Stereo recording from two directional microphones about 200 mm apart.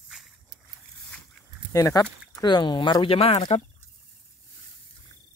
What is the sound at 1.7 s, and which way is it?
Speech, 15° left (ahead or behind).